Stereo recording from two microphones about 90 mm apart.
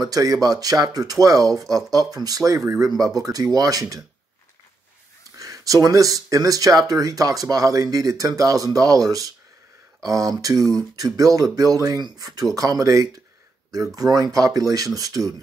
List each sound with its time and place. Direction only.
0.0 s speech: 40° right (ahead or behind)
5.4 s speech: 40° right (ahead or behind)